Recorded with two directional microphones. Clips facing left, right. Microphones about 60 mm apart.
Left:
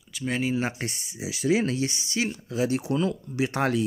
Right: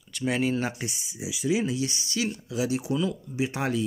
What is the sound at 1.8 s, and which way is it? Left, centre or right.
Speech, left.